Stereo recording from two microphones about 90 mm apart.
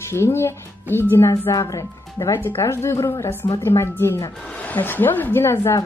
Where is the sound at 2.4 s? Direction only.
30° left (ahead or behind).